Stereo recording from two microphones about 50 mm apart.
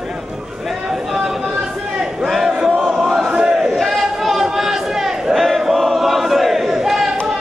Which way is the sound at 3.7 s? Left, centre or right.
Centre.